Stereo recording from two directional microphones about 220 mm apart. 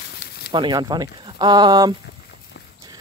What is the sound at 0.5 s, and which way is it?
Speech, 20° right (ahead or behind).